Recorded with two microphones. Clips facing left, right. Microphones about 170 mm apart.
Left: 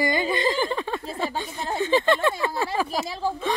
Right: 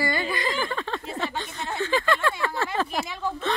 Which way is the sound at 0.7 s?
15° left (ahead or behind).